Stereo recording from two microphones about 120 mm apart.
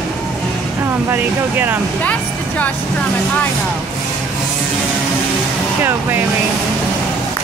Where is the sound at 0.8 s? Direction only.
20° right (ahead or behind).